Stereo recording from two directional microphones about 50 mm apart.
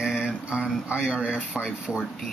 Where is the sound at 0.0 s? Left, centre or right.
Centre.